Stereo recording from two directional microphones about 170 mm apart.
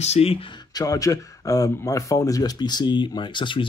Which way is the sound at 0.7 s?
20° left (ahead or behind).